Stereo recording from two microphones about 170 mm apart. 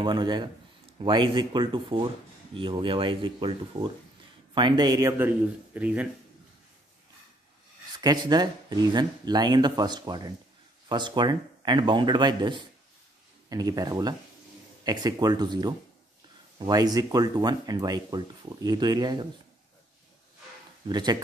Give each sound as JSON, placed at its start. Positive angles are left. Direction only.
{"t": 0.0, "sound": "speech", "side_deg": -25}
{"t": 8.0, "sound": "speech", "side_deg": -25}
{"t": 20.9, "sound": "speech", "side_deg": -25}